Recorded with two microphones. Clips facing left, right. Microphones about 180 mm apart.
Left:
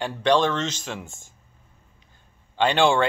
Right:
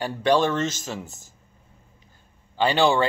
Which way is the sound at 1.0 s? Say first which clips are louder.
Even; 40° right (ahead or behind).